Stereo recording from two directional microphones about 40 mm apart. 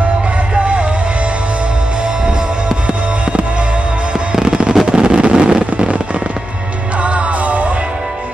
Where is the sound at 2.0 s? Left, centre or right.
Right.